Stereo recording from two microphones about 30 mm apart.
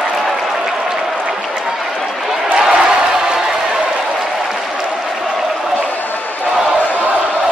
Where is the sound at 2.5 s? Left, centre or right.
Right.